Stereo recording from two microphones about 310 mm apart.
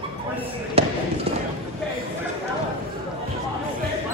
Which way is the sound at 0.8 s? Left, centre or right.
Centre.